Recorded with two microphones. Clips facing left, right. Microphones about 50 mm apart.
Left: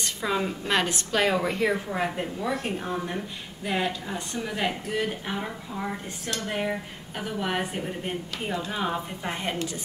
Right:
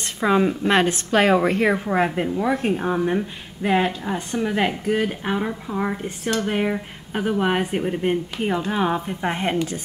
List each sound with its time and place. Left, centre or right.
0.2 s a woman's voice: right